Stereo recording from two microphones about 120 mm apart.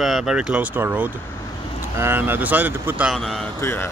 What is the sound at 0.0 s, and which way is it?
Speech, 5° right (ahead or behind).